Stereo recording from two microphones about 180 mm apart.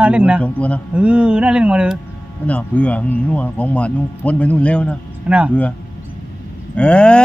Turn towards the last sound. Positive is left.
turn(degrees=5)  # may be behind; listen again after turning